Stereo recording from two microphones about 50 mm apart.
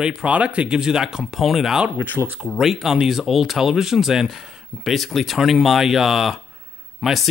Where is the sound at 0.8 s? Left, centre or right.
Centre.